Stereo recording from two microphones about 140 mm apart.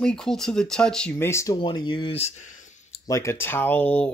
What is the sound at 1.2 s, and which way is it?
Speech, 20° left (ahead or behind).